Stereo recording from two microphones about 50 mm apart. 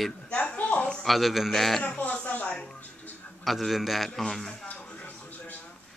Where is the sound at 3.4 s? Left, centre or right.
Centre.